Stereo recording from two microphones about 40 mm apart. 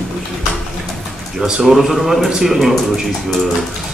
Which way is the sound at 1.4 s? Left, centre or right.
Centre.